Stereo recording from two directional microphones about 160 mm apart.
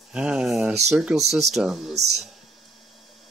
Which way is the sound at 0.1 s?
5° right (ahead or behind).